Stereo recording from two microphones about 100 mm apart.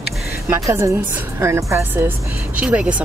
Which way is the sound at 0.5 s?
30° right (ahead or behind).